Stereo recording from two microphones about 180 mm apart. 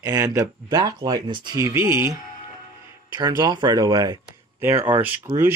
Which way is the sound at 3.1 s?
20° right (ahead or behind).